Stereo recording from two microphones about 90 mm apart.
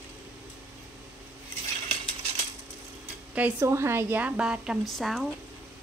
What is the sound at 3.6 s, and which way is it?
A woman's voice, 30° right (ahead or behind).